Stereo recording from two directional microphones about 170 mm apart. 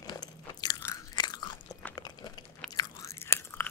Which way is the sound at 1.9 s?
25° left (ahead or behind).